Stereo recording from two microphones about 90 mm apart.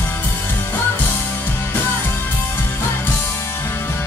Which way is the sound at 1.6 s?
25° left (ahead or behind).